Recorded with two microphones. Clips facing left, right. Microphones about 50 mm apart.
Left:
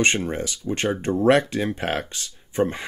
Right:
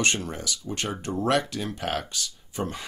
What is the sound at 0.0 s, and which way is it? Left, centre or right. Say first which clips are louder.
Speech: left 5 dB; left.